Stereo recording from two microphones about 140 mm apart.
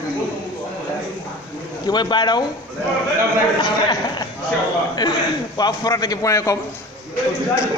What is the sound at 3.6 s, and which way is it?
A man's voice, 30° left (ahead or behind).